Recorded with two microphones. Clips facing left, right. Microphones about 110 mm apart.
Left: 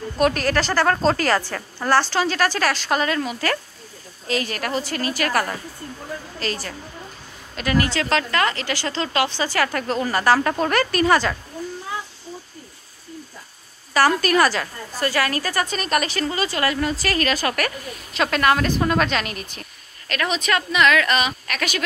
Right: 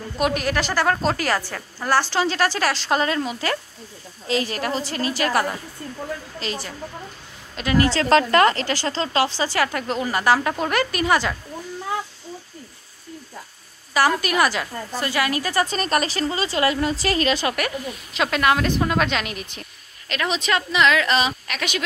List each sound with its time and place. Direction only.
0.2 s a woman's voice: 15° right (ahead or behind)
9.7 s a woman's voice: 15° right (ahead or behind)
13.9 s a woman's voice: 15° right (ahead or behind)
15.7 s a woman's voice: 35° right (ahead or behind); by 21.8 s 15° right (ahead or behind)